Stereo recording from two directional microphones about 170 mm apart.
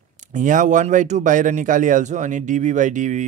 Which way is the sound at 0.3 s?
50° right (ahead or behind).